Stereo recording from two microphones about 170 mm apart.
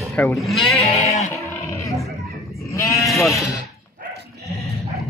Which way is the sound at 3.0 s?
Centre (ahead or behind).